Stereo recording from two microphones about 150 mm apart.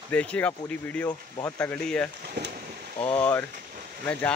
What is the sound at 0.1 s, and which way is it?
Speech, 10° left (ahead or behind).